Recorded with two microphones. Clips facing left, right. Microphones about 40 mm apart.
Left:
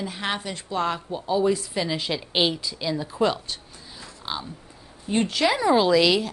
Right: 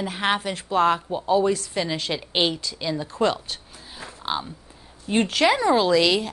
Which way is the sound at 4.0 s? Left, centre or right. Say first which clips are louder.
Right 5 dB; right.